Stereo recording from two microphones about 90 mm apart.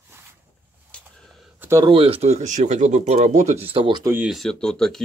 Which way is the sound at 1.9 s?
90° right.